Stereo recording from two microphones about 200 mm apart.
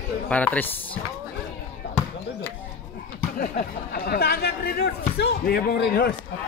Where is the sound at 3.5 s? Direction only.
50° left (ahead or behind).